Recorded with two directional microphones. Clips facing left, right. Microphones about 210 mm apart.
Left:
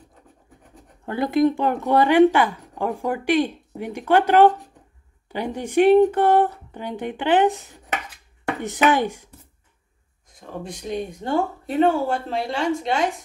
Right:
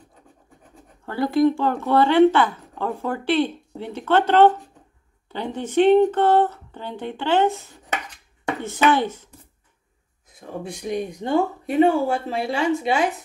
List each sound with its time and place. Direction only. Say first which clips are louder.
1.0 s speech: even; 20° left (ahead or behind)
10.2 s speech: right 1 dB; 10° right (ahead or behind)